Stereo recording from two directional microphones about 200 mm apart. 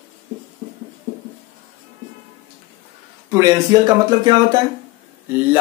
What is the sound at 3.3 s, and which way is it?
Speech, 15° right (ahead or behind).